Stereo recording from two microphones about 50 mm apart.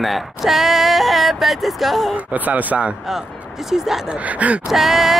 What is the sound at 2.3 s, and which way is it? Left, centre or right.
Speech, right.